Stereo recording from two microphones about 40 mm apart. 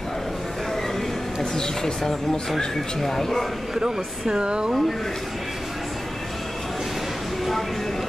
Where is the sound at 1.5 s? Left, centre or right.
Centre.